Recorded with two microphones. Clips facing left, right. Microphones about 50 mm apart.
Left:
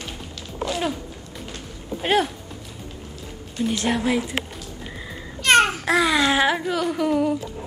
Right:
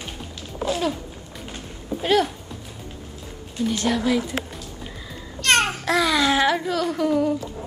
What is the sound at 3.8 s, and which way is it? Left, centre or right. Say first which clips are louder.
Speech: right 1 dB; left.